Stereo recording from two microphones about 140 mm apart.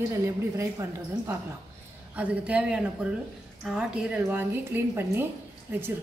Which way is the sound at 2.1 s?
10° right (ahead or behind).